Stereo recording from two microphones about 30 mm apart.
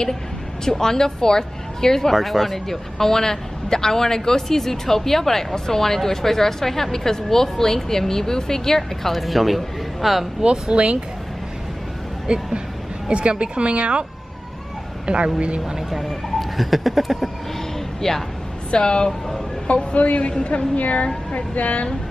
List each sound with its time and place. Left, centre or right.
0.7 s a man's voice: centre
2.1 s speech: centre
2.5 s a man's voice: centre
9.1 s speech: centre
10.4 s speech: right
12.3 s speech: right
15.0 s speech: right
15.9 s speech: centre
18.0 s a man's voice: centre
18.7 s speech: left
19.0 s a man's voice: centre
20.0 s a woman's voice: left
20.2 s a woman's voice: left